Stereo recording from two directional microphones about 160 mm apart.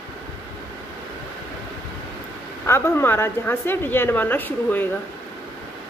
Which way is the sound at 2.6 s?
15° left (ahead or behind).